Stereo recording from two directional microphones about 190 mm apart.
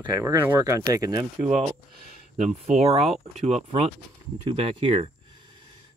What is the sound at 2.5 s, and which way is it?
Speech, 35° right (ahead or behind).